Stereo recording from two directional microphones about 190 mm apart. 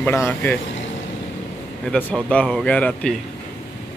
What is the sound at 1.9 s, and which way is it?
Speech, 5° left (ahead or behind).